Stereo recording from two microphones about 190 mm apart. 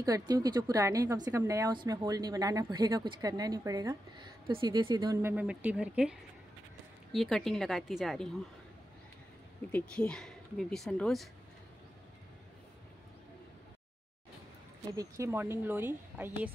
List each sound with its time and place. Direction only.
0.0 s a woman's voice: 20° right (ahead or behind); by 8.3 s centre (ahead or behind)
9.7 s speech: 5° left (ahead or behind)
15.0 s a woman's voice: 15° right (ahead or behind)